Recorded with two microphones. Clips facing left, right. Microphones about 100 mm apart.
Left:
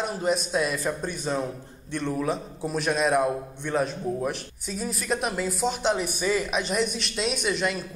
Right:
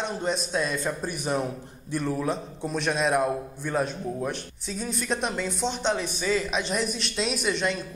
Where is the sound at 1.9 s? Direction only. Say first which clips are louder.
Even; 5° right (ahead or behind).